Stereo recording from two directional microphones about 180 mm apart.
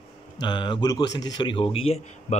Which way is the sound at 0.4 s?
25° left (ahead or behind).